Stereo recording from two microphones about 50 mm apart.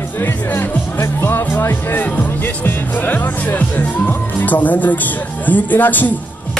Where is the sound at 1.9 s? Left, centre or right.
Left.